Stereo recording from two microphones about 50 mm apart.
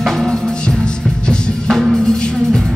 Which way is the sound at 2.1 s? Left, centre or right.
Centre.